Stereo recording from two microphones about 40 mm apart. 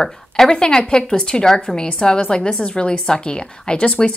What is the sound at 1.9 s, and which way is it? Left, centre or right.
A woman's voice, left.